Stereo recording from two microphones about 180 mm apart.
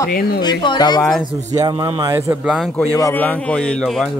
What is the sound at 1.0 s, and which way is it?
Speech, centre (ahead or behind).